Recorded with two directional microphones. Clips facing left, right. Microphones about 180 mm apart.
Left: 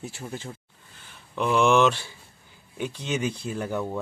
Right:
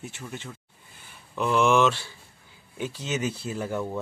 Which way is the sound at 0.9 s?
10° right (ahead or behind).